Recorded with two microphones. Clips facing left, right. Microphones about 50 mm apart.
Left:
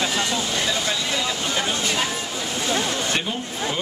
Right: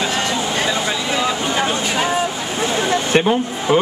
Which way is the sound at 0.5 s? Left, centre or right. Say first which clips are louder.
Right 4 dB; right.